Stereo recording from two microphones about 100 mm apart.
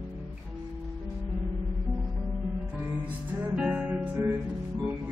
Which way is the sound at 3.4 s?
10° right (ahead or behind).